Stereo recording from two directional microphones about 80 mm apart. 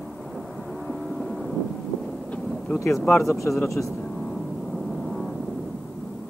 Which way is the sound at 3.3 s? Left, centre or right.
Left.